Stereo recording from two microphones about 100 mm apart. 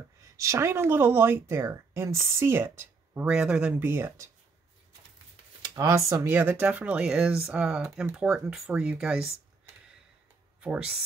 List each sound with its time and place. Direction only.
0.4 s speech: 30° right (ahead or behind)
3.3 s speech: 10° right (ahead or behind)
3.8 s speech: 25° right (ahead or behind)
5.9 s speech: 30° right (ahead or behind); by 9.3 s 10° right (ahead or behind)
10.6 s speech: 10° right (ahead or behind)